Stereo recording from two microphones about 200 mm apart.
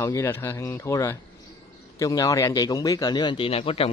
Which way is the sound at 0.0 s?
15° left (ahead or behind).